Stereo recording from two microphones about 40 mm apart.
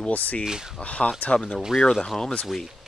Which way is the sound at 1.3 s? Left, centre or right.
Left.